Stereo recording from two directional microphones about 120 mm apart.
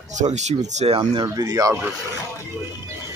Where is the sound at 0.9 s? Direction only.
35° right (ahead or behind).